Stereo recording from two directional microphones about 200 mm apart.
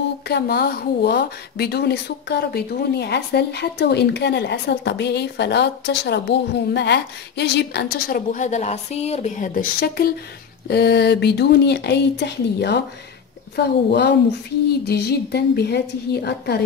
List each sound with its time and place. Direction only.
0.3 s a woman's voice: 50° left (ahead or behind)